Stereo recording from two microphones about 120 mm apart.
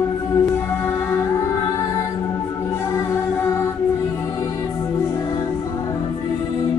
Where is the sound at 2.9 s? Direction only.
25° left (ahead or behind).